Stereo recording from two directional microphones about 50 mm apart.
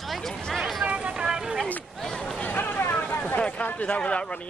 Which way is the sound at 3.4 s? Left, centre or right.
Left.